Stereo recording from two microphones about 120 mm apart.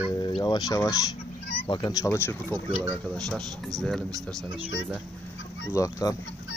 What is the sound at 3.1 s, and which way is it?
Speech, 5° left (ahead or behind).